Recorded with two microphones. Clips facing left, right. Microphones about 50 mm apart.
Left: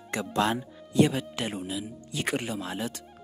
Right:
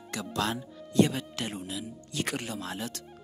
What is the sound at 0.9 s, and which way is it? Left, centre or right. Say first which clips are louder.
Speech: left 2 dB; centre.